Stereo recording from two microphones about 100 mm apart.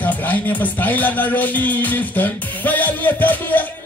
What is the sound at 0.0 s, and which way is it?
Music, 15° left (ahead or behind).